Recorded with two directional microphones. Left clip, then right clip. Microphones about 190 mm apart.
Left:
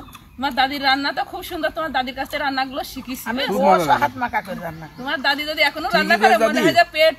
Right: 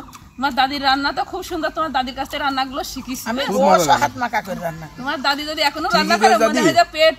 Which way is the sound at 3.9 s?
50° right (ahead or behind).